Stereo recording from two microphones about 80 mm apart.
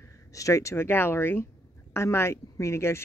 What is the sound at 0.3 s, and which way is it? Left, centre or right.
Speech, left.